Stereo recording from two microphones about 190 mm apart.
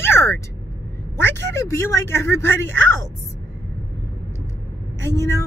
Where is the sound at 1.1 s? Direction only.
70° right (ahead or behind).